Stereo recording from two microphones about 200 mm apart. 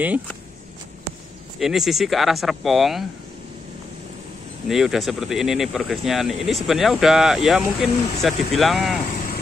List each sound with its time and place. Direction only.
1.6 s speech: centre (ahead or behind)
4.6 s speech: centre (ahead or behind)